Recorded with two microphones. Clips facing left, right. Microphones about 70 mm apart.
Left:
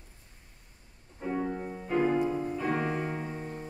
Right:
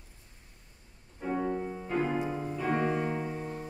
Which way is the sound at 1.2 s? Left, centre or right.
Centre.